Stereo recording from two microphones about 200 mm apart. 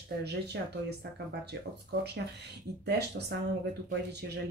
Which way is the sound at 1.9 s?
55° right (ahead or behind).